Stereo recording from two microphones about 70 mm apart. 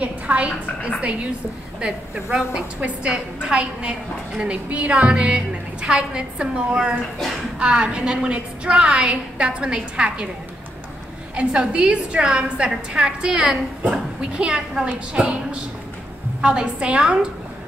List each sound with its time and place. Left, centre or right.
0.0 s a woman's voice: centre
11.3 s a woman's voice: centre